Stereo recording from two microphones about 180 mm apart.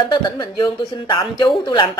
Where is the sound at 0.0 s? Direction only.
25° left (ahead or behind).